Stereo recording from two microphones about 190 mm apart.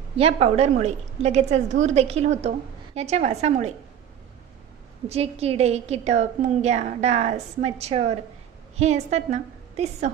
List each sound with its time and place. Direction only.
0.1 s a woman's voice: 30° right (ahead or behind)
5.0 s a woman's voice: 35° right (ahead or behind)